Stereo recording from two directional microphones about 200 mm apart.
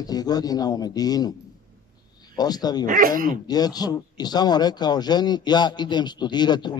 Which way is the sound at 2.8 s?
40° right (ahead or behind).